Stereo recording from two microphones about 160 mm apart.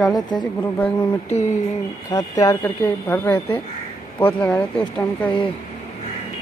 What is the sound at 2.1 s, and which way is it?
Speech, 25° left (ahead or behind).